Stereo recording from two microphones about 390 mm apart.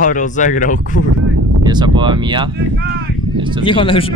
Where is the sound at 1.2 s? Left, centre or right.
Right.